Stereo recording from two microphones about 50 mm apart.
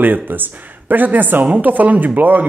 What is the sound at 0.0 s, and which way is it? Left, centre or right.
Speech, right.